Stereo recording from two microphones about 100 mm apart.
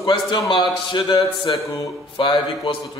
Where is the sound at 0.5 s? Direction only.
55° left (ahead or behind).